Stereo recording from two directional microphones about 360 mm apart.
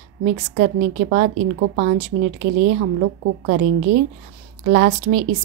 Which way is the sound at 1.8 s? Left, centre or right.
Right.